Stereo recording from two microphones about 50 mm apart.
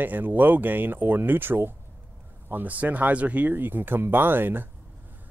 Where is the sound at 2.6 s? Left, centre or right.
Right.